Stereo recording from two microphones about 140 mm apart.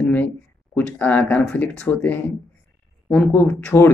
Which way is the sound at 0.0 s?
10° left (ahead or behind).